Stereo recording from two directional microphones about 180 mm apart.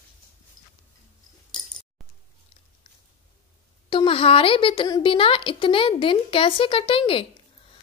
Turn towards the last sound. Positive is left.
turn(degrees=30)  # may be behind; listen again after turning